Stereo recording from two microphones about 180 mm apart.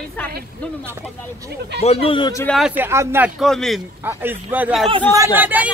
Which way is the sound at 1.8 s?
35° left (ahead or behind).